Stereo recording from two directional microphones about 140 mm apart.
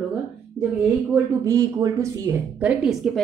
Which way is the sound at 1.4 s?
25° right (ahead or behind).